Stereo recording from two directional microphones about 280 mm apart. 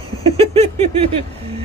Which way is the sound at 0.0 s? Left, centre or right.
Right.